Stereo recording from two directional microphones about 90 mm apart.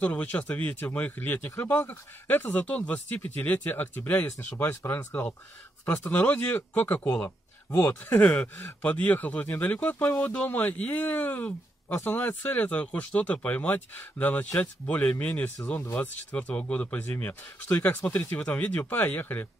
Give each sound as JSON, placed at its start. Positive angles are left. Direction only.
{"t": 0.0, "sound": "speech", "side_deg": 15}